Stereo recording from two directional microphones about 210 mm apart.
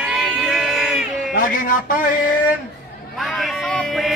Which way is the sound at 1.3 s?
40° left (ahead or behind).